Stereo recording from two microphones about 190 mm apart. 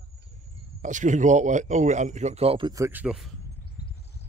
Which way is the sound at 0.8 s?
40° right (ahead or behind).